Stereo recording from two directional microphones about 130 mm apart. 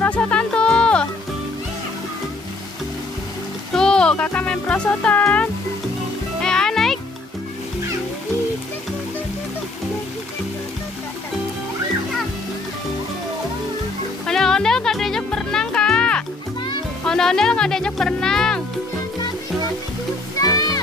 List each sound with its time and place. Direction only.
0.0 s music: 10° left (ahead or behind)
3.7 s music: 5° left (ahead or behind)
14.2 s music: 5° left (ahead or behind)
20.3 s music: 30° left (ahead or behind)